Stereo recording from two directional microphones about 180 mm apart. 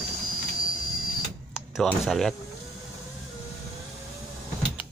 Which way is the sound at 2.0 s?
Centre (ahead or behind).